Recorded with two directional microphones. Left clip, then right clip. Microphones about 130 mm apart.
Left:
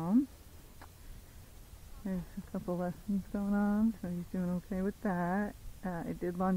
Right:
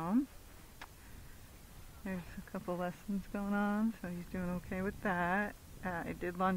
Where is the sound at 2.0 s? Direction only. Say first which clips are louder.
Left 2 dB; 35° right (ahead or behind).